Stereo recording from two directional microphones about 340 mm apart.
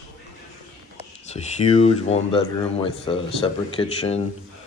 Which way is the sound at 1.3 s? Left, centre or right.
Centre.